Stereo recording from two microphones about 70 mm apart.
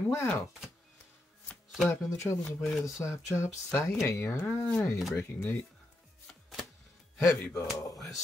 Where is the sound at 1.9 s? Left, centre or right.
Left.